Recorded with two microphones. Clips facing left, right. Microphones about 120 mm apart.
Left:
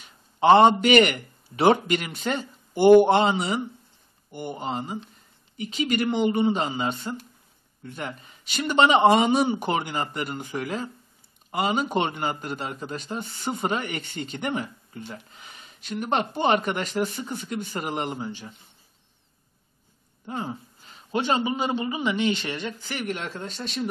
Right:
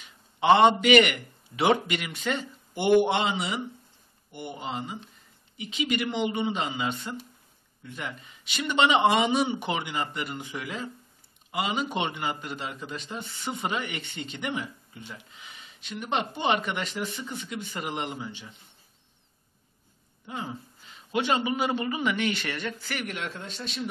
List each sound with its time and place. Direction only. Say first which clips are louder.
0.0 s a man's voice: left 5 dB; 40° left (ahead or behind)
20.2 s a man's voice: left 4 dB; 40° left (ahead or behind); by 22.9 s 20° left (ahead or behind)
22.9 s a man's voice: left 3 dB; 35° left (ahead or behind)